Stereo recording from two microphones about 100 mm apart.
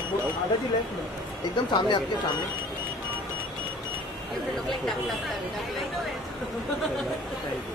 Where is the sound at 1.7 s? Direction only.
50° left (ahead or behind).